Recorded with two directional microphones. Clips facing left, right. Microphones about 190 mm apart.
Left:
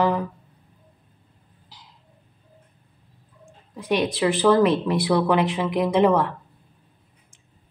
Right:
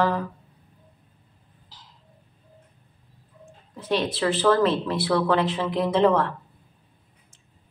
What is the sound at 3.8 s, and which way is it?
Speech, 15° left (ahead or behind).